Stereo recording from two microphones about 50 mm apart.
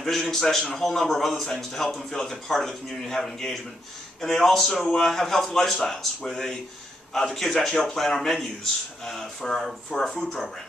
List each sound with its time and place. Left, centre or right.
0.0 s a man's voice: centre